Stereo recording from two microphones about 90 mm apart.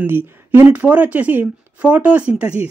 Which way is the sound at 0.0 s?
25° right (ahead or behind).